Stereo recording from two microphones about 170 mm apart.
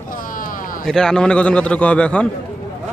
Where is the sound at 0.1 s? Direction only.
55° left (ahead or behind).